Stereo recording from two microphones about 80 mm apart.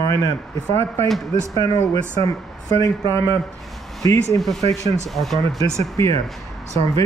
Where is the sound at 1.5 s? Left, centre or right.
Left.